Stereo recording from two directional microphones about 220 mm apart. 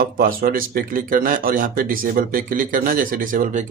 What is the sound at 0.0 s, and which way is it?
Speech, 40° right (ahead or behind).